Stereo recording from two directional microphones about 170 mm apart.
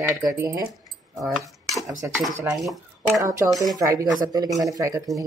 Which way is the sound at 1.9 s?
15° right (ahead or behind).